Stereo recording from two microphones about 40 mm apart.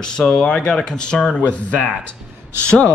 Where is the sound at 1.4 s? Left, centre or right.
Left.